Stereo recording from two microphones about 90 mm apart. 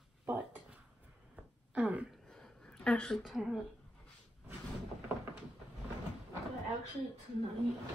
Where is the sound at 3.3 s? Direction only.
Centre (ahead or behind).